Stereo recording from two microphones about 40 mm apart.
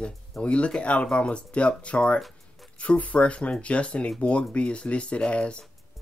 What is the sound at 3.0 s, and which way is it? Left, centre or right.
Speech, left.